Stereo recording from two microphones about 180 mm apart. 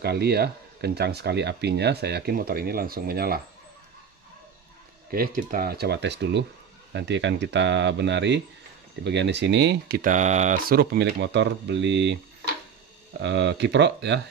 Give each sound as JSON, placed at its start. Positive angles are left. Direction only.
{"t": 0.0, "sound": "speech", "side_deg": -60}
{"t": 5.1, "sound": "speech", "side_deg": -55}
{"t": 13.2, "sound": "speech", "side_deg": -75}